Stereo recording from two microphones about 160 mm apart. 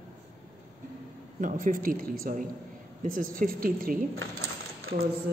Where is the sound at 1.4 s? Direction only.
55° right (ahead or behind).